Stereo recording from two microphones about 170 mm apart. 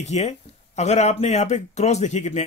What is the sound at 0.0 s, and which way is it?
Speech, 40° left (ahead or behind).